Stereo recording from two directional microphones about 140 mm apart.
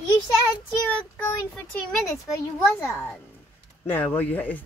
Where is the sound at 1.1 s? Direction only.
5° left (ahead or behind).